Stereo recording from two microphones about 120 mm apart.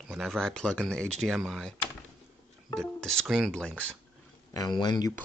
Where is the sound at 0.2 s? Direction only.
5° left (ahead or behind).